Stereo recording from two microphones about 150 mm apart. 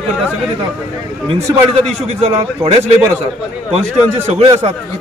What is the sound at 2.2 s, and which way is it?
Speech, 40° right (ahead or behind).